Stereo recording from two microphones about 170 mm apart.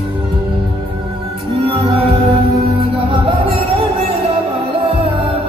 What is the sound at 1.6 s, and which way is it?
Music, 35° right (ahead or behind).